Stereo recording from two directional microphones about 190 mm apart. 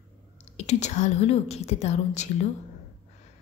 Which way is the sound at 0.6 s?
35° left (ahead or behind).